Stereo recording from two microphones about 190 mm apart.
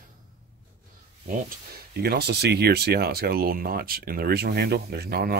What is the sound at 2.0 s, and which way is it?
Speech, 55° right (ahead or behind).